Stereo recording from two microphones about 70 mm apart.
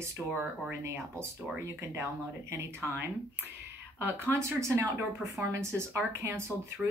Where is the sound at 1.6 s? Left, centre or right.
Right.